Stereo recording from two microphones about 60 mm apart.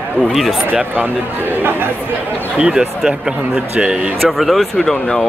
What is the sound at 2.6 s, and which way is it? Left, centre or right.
Speech, right.